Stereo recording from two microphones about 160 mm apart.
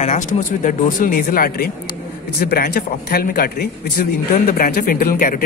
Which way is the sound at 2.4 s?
75° left (ahead or behind).